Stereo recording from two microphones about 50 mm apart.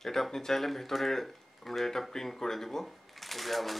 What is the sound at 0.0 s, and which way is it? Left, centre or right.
Speech, centre.